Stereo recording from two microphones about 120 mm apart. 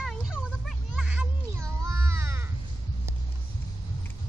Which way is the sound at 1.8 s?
25° right (ahead or behind).